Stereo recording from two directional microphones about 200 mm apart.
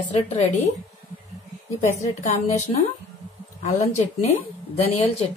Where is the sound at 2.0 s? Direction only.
35° left (ahead or behind).